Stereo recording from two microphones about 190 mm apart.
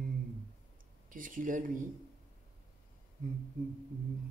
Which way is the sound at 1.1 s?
45° right (ahead or behind).